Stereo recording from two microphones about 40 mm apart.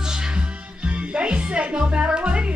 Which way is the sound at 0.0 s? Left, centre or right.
Centre.